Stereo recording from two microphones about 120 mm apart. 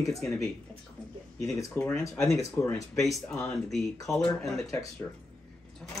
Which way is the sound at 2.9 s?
Centre (ahead or behind).